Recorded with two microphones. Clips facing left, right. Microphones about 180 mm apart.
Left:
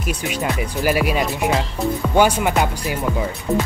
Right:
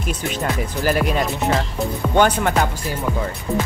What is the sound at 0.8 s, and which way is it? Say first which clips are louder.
Speech: even; 5° left (ahead or behind).